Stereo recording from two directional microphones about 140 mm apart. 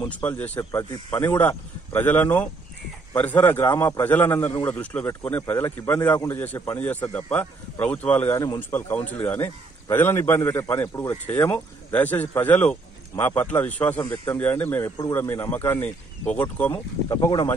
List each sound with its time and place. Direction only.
0.1 s speech: 10° left (ahead or behind)
17.1 s speech: 25° left (ahead or behind)